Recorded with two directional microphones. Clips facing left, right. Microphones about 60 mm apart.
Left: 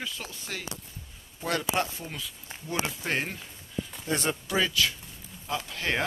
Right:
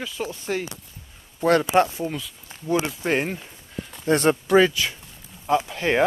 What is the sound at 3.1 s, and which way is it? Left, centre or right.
Speech, centre.